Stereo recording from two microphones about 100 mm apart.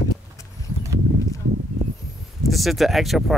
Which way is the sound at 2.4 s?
Centre (ahead or behind).